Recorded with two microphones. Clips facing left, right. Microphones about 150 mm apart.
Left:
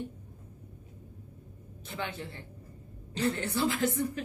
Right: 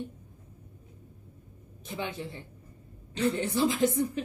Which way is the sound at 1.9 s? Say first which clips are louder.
Right 2 dB; 15° right (ahead or behind).